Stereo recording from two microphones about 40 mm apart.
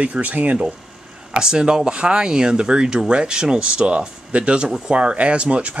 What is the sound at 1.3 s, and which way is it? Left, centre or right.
Speech, right.